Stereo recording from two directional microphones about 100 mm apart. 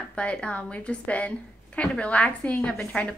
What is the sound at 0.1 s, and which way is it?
A woman's voice, 10° left (ahead or behind).